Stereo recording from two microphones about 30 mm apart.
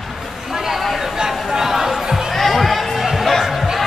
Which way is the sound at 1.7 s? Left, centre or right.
Centre.